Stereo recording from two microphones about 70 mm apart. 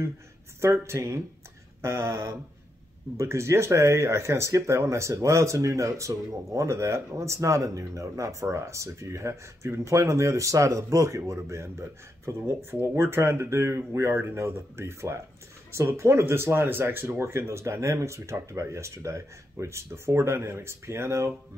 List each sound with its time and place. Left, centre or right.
0.6 s speech: right
12.9 s speech: right